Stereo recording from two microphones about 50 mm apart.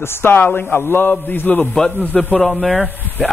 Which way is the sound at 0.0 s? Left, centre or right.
Left.